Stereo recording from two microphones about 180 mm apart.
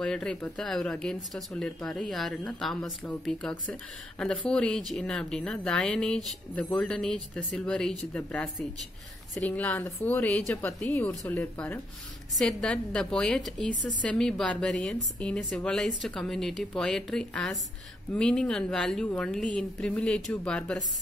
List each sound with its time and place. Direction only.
0.0 s a woman's voice: 5° left (ahead or behind)